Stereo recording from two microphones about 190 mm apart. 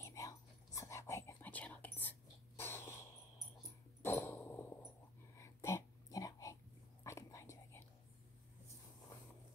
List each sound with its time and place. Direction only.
0.0 s whispering: 15° left (ahead or behind)
4.0 s dog: 10° left (ahead or behind)
5.4 s a sound: 15° left (ahead or behind)